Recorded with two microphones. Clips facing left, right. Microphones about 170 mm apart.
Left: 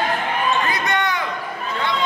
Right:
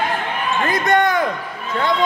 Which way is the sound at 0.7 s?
50° right (ahead or behind).